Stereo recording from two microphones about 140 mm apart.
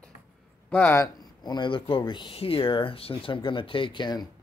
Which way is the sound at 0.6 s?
15° left (ahead or behind).